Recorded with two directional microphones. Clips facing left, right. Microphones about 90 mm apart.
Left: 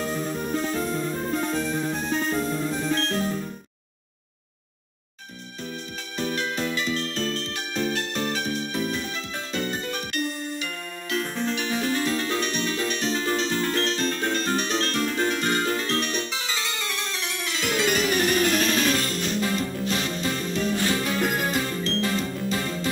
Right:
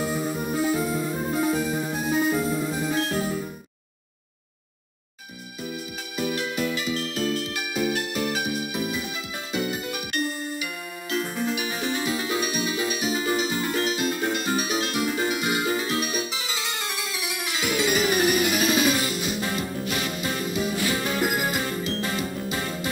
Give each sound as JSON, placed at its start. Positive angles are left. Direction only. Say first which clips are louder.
{"t": 0.0, "sound": "music", "louder": "right 1 dB", "side_deg": -10}
{"t": 6.1, "sound": "music", "louder": "even", "side_deg": -10}
{"t": 6.5, "sound": "music", "louder": "right 1 dB", "side_deg": 35}
{"t": 6.8, "sound": "music", "louder": "even", "side_deg": -10}